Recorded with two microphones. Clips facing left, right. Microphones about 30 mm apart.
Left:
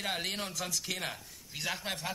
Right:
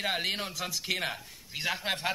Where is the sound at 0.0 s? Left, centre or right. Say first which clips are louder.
Right 4 dB; centre.